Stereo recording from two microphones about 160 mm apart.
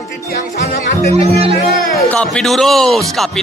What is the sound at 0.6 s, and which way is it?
Speech, 40° right (ahead or behind).